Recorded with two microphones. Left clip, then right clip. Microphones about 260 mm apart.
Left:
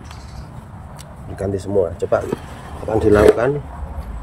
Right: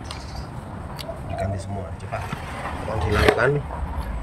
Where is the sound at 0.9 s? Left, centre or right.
Centre.